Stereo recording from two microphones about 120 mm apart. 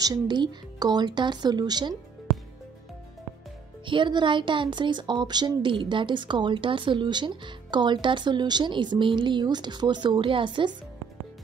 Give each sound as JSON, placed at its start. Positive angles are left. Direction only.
{"t": 0.0, "sound": "speech", "side_deg": -35}
{"t": 3.8, "sound": "speech", "side_deg": -40}